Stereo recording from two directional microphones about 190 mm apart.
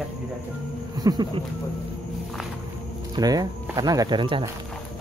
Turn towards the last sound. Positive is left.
turn(degrees=-25)  # may be behind; listen again after turning